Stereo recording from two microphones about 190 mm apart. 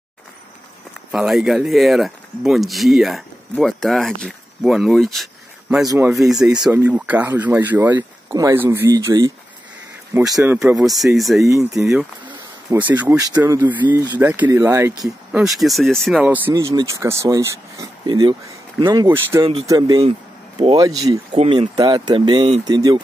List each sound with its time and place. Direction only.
1.1 s speech: centre (ahead or behind)
5.9 s speech: 10° right (ahead or behind)
6.1 s speech: centre (ahead or behind); by 9.3 s 20° right (ahead or behind)
10.1 s speech: 5° right (ahead or behind)
11.4 s speech: 15° right (ahead or behind)
11.8 s speech: centre (ahead or behind)
15.4 s speech: centre (ahead or behind); by 20.0 s 15° right (ahead or behind)
20.0 s speech: 30° right (ahead or behind)
22.8 s speech: 20° right (ahead or behind)